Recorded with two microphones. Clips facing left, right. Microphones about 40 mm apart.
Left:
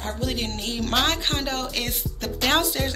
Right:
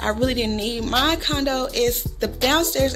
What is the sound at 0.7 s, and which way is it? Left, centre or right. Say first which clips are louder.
Speech: right 1 dB; centre.